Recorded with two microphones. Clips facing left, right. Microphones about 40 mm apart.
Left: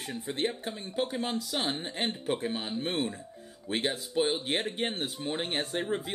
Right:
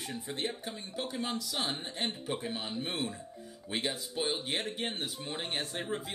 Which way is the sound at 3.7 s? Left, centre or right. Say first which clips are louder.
Left 4 dB; left.